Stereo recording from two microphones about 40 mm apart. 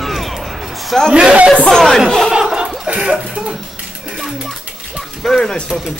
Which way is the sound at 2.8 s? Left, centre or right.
Right.